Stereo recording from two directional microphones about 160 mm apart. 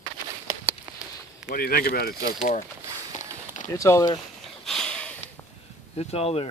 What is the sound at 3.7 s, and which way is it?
Speech, 20° left (ahead or behind).